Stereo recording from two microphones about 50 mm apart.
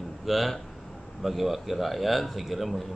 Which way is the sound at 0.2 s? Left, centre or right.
Centre.